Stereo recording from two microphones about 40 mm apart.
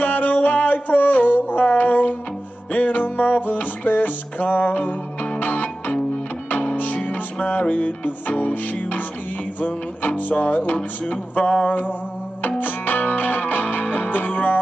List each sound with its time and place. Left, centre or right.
0.0 s music: left
5.4 s music: left
9.6 s music: left
10.4 s speech: left
12.5 s music: left